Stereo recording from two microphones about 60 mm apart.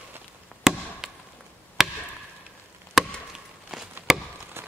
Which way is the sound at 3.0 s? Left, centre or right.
Centre.